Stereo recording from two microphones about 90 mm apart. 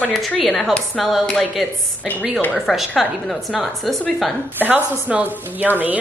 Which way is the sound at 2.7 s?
Centre (ahead or behind).